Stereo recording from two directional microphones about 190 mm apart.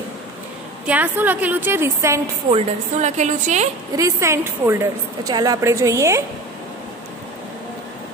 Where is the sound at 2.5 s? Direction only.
40° right (ahead or behind).